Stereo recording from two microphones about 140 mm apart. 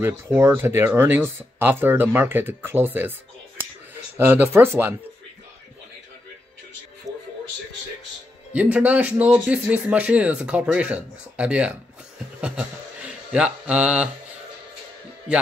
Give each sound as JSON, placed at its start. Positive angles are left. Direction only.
{"t": 0.0, "sound": "speech", "side_deg": -15}
{"t": 7.1, "sound": "music", "side_deg": -25}
{"t": 8.5, "sound": "speech", "side_deg": -10}